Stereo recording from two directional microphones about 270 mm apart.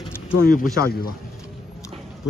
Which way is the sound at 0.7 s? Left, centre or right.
Left.